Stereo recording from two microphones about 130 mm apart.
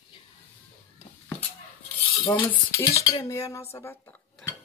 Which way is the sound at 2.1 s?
30° left (ahead or behind).